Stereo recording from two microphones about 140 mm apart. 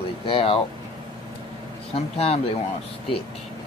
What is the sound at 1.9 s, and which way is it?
Speech, 50° left (ahead or behind).